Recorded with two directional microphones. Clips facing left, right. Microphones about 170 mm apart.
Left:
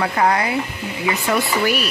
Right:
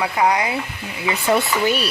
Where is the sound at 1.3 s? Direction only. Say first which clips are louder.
Right 2 dB; 30° right (ahead or behind).